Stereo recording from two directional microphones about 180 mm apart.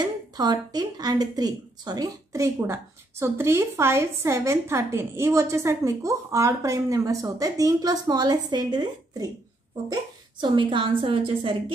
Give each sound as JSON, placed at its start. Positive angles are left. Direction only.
{"t": 0.0, "sound": "speech", "side_deg": -20}
{"t": 10.4, "sound": "a woman's voice", "side_deg": -25}